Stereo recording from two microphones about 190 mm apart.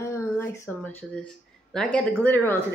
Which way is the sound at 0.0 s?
15° left (ahead or behind).